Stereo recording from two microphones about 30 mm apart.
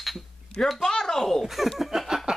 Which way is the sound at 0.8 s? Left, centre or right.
Centre.